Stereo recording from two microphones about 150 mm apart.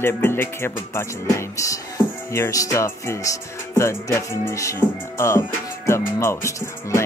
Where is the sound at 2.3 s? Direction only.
20° left (ahead or behind).